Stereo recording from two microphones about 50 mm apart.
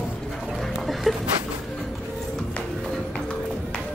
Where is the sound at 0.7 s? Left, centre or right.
Centre.